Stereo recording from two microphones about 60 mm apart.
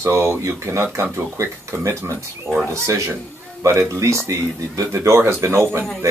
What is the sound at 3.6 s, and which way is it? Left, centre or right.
Speech, right.